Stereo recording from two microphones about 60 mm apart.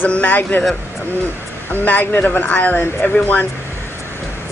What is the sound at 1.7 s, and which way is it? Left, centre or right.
Speech, left.